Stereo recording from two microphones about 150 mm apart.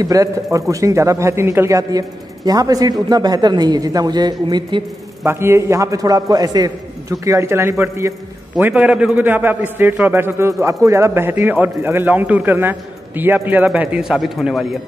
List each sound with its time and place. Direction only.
0.0 s a man's voice: 20° right (ahead or behind)
5.2 s a man's voice: 15° right (ahead or behind)